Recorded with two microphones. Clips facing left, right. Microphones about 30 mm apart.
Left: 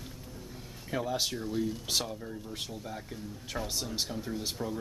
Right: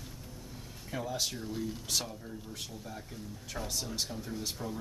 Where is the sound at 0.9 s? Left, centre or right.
Centre.